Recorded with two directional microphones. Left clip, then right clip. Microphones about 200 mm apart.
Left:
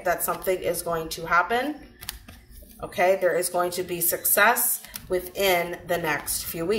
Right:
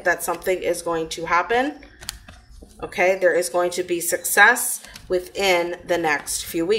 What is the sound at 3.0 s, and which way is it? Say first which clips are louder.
Speech: right 3 dB; 50° right (ahead or behind).